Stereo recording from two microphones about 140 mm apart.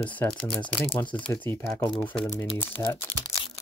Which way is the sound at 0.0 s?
10° left (ahead or behind).